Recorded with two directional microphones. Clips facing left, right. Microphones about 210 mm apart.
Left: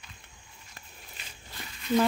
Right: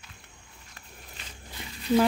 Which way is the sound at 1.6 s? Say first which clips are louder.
Right 2 dB; 20° right (ahead or behind).